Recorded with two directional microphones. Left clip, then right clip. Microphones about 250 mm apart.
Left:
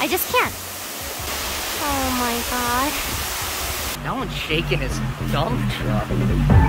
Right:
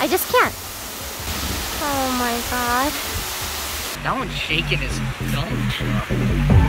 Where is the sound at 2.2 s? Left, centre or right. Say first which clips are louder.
Right 1 dB; centre.